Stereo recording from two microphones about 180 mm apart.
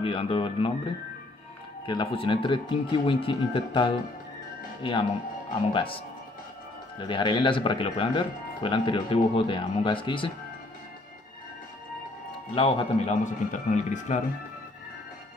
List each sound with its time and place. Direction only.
0.0 s speech: 30° left (ahead or behind)
1.9 s speech: 25° left (ahead or behind)
12.5 s speech: 30° left (ahead or behind)
13.2 s speech: 45° left (ahead or behind)